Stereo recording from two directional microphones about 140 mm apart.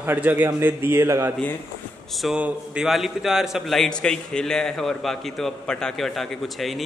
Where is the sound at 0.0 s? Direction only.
15° right (ahead or behind).